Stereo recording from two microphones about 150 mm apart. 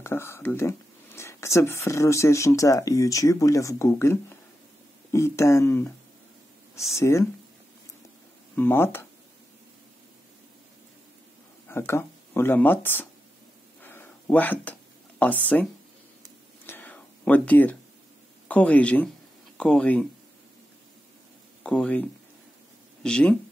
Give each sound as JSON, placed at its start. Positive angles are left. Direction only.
{"t": 0.0, "sound": "speech", "side_deg": 15}
{"t": 7.0, "sound": "speech", "side_deg": 20}
{"t": 8.5, "sound": "speech", "side_deg": 15}
{"t": 11.6, "sound": "speech", "side_deg": 15}
{"t": 13.8, "sound": "a sound", "side_deg": 15}
{"t": 15.4, "sound": "speech", "side_deg": 10}
{"t": 16.6, "sound": "whispering", "side_deg": 10}
{"t": 18.5, "sound": "speech", "side_deg": 10}
{"t": 21.6, "sound": "speech", "side_deg": 5}